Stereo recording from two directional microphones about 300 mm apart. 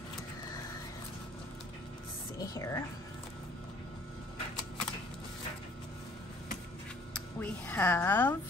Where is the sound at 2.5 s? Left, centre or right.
Centre.